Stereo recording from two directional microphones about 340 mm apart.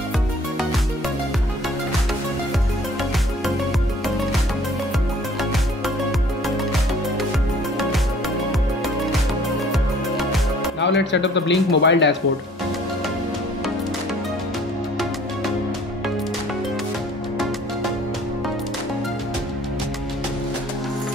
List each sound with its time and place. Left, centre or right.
9.7 s music: centre
10.8 s speech: left